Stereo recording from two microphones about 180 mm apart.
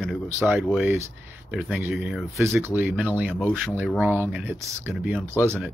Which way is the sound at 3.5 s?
5° left (ahead or behind).